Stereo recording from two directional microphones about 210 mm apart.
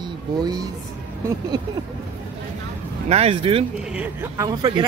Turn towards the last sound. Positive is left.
turn(degrees=-15)  # may be behind; listen again after turning